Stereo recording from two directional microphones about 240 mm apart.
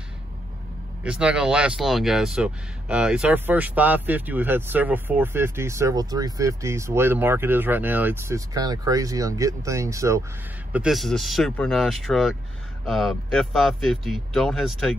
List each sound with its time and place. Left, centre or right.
1.0 s speech: centre